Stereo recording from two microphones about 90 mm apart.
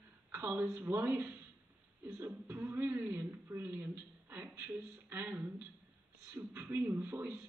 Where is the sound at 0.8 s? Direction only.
20° right (ahead or behind).